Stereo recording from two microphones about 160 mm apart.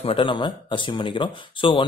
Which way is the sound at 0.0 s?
35° left (ahead or behind).